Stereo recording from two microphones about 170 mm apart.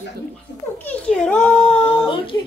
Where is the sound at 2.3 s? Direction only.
20° left (ahead or behind).